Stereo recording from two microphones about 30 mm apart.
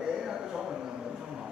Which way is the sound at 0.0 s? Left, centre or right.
Right.